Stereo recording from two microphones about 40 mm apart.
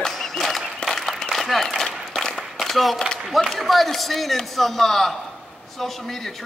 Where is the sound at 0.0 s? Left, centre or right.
Centre.